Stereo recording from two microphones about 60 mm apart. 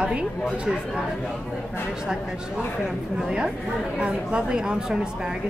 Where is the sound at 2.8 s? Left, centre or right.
Centre.